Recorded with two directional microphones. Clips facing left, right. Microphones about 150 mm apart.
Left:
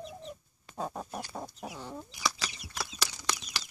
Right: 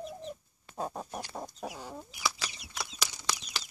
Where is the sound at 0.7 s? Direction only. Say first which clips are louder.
Even; 5° right (ahead or behind).